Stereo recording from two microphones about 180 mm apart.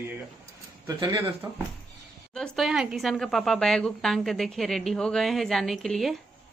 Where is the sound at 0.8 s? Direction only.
25° right (ahead or behind).